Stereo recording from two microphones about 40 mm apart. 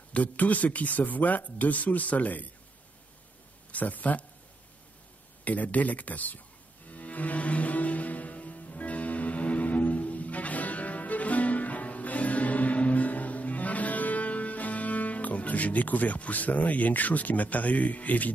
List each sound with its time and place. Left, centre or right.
0.1 s speech: left
3.7 s speech: left
5.4 s speech: left
6.9 s music: left